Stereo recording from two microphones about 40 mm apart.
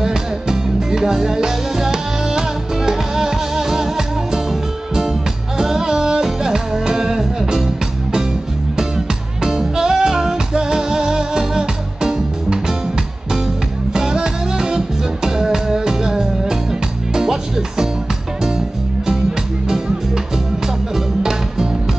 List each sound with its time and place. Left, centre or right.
0.0 s music: centre
20.6 s music: centre